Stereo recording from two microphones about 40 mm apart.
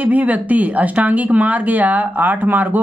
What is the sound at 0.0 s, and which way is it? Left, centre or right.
Speech, right.